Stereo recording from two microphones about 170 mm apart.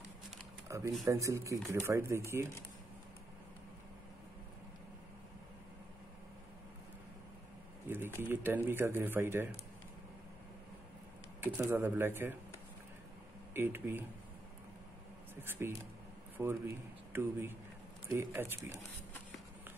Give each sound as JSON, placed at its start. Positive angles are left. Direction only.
{"t": 0.7, "sound": "speech", "side_deg": -20}
{"t": 7.9, "sound": "speech", "side_deg": -15}
{"t": 11.4, "sound": "speech", "side_deg": -10}
{"t": 13.5, "sound": "speech", "side_deg": -15}
{"t": 15.4, "sound": "speech", "side_deg": -10}